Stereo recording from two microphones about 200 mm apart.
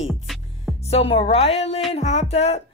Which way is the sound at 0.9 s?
30° left (ahead or behind).